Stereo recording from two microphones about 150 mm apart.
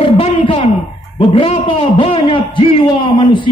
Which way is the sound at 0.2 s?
40° left (ahead or behind).